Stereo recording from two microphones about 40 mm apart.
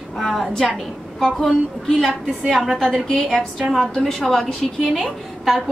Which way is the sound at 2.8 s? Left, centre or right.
Centre.